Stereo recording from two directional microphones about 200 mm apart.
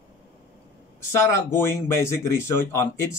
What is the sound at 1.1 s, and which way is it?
Speech, 10° left (ahead or behind).